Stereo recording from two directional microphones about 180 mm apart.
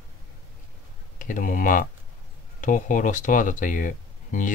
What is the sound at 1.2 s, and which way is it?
Speech, 45° left (ahead or behind).